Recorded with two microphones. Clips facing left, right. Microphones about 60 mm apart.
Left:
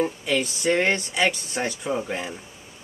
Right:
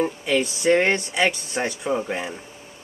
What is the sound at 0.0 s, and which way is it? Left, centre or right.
Speech, centre.